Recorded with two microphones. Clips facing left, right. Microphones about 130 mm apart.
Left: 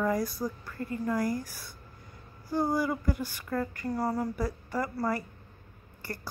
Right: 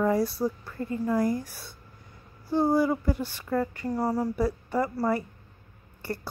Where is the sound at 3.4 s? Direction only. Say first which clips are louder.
Right 4 dB; 10° right (ahead or behind).